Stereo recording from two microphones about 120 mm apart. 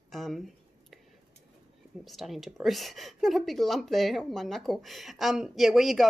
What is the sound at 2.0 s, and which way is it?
A woman's voice, centre (ahead or behind).